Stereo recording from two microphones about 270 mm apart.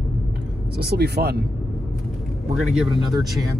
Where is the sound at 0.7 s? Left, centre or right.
Right.